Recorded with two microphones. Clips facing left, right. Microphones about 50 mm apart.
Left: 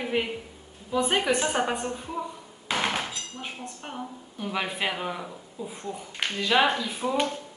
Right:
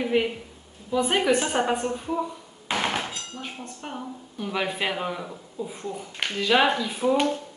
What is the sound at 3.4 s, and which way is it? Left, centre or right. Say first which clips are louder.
Speech: right 1 dB; centre.